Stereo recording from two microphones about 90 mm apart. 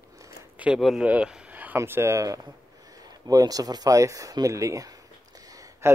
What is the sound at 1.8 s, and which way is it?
A man's voice, 30° right (ahead or behind).